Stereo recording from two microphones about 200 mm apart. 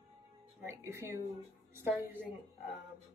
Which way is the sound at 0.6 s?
15° right (ahead or behind).